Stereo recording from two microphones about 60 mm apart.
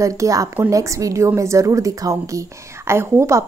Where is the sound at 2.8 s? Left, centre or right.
Right.